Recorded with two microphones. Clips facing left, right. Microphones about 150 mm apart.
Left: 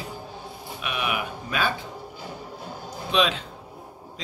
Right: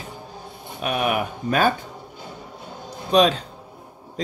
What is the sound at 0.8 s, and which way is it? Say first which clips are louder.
Speech: right 7 dB; 45° right (ahead or behind).